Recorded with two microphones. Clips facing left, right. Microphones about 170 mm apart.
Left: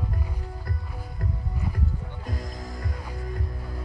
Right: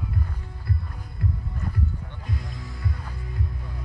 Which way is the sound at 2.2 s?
45° left (ahead or behind).